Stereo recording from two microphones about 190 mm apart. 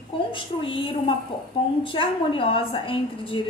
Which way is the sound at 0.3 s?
25° left (ahead or behind).